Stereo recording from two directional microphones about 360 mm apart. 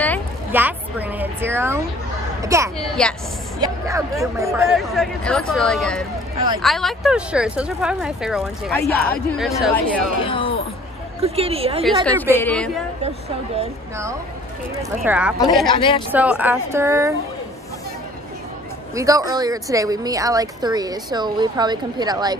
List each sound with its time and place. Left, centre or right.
0.5 s a sound: centre
2.4 s speech: centre
10.2 s speech: centre
11.1 s speech: centre
11.8 s speech: centre
13.6 s speech: centre
16.1 s speech: centre
18.9 s speech: centre